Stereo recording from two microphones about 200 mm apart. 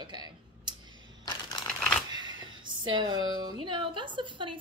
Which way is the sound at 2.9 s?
20° right (ahead or behind).